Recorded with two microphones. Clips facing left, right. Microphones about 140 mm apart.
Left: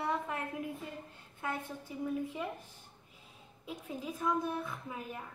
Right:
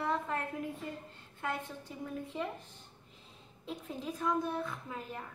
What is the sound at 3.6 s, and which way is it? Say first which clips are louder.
A woman's voice: right 1 dB; 10° left (ahead or behind).